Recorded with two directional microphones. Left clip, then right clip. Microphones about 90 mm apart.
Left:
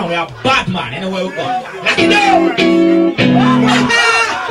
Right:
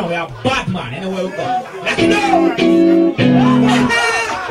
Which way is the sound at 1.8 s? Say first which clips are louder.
Left 4 dB; 25° left (ahead or behind).